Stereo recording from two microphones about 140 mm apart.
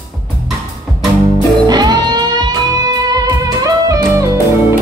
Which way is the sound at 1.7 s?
30° right (ahead or behind).